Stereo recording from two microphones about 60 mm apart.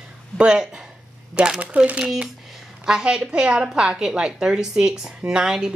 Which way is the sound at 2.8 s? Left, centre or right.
Centre.